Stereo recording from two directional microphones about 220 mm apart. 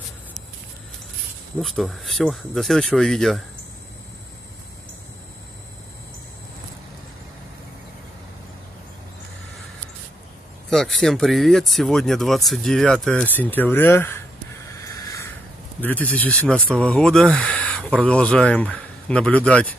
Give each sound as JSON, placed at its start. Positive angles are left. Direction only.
{"t": 1.6, "sound": "speech", "side_deg": 0}
{"t": 10.7, "sound": "speech", "side_deg": 0}
{"t": 14.7, "sound": "a sound", "side_deg": 15}
{"t": 15.8, "sound": "speech", "side_deg": 5}